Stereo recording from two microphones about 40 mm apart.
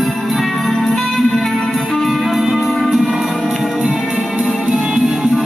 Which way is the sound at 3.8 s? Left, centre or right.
Right.